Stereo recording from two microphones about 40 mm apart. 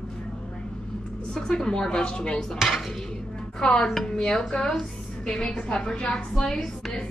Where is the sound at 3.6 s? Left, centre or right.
Centre.